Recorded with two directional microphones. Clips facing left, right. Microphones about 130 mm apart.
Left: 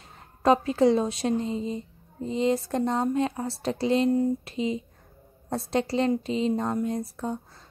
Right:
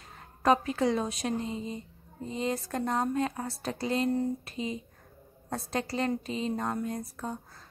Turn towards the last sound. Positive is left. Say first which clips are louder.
# left 6 dB
turn(degrees=25)  # may be behind; listen again after turning